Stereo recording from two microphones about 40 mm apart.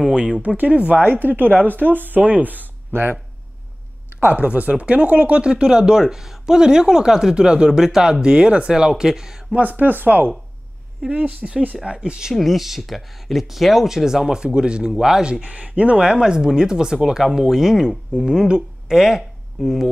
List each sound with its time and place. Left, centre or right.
0.1 s speech: right
0.4 s speech: right
1.2 s speech: right
2.9 s speech: right
4.3 s speech: right; by 9.6 s centre
9.6 s speech: right
11.2 s speech: right
12.4 s speech: centre
15.4 s speech: right
16.0 s speech: centre